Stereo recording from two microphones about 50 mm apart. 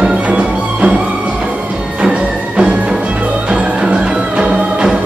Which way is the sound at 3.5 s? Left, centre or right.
Centre.